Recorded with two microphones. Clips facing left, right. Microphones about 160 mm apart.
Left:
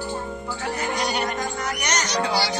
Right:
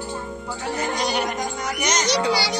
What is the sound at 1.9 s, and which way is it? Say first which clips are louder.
Speech: right 3 dB; 90° right.